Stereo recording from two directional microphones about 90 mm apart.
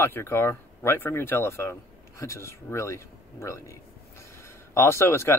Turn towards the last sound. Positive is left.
turn(degrees=30)  # may be behind; listen again after turning